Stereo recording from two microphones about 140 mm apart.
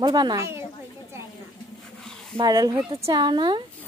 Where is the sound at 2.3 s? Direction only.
30° right (ahead or behind).